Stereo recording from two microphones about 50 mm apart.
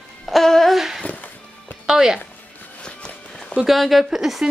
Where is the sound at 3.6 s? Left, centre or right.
Centre.